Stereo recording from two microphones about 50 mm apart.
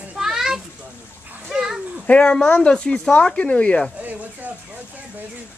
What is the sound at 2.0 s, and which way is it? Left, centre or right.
Speech, centre.